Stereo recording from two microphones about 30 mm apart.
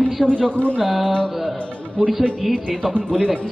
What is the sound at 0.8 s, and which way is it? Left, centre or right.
Mantra, centre.